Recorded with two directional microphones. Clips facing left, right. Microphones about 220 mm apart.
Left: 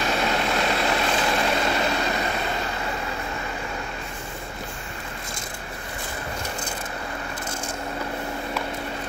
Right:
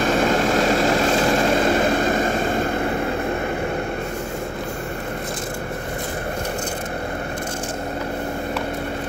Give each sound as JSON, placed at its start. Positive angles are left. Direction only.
{"t": 0.0, "sound": "vehicle", "side_deg": -50}